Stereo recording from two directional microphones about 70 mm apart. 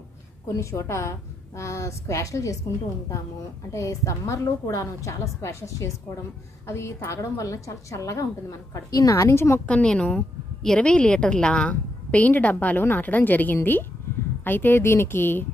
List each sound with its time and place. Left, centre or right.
0.5 s a woman's voice: left
3.7 s a woman's voice: left
9.7 s a woman's voice: centre; by 15.4 s left